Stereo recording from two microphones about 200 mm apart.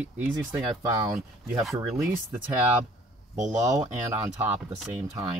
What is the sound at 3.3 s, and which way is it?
Speech, 15° right (ahead or behind).